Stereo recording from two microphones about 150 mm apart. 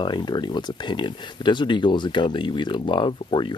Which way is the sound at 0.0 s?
30° left (ahead or behind).